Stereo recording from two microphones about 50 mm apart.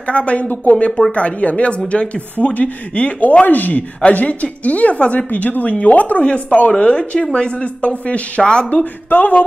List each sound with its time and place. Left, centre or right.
0.0 s a woman's voice: left
8.6 s a woman's voice: left